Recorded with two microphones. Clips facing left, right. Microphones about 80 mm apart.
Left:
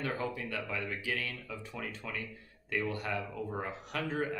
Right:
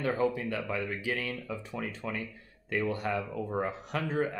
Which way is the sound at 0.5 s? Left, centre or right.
Right.